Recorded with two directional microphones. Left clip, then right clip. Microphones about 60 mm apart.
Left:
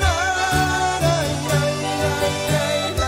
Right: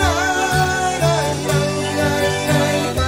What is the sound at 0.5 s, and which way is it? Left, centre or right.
Music, left.